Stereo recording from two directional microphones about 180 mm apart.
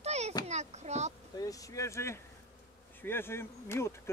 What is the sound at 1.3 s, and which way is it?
Speech, 20° left (ahead or behind).